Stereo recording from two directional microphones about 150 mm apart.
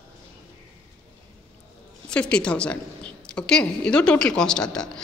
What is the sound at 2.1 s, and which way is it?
A woman's voice, 5° left (ahead or behind).